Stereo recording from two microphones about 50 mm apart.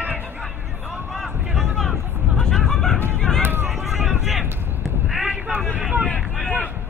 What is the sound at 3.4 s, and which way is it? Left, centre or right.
Run, right.